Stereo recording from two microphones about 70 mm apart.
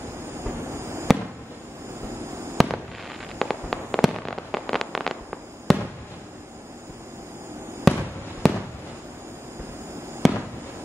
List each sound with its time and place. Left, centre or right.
0.4 s train: right
2.5 s fireworks: centre
7.9 s fireworks: centre
10.2 s fireworks: centre